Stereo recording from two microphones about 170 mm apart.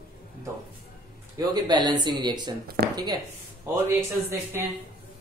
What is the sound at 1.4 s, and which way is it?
Speech, 25° right (ahead or behind).